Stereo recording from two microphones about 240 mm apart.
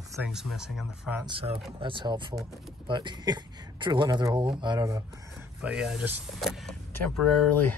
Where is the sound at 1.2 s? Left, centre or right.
Right.